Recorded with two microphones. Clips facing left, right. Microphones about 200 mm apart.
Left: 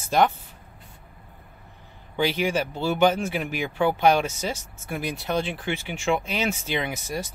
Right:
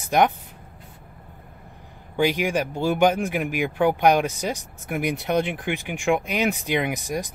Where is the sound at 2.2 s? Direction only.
15° right (ahead or behind).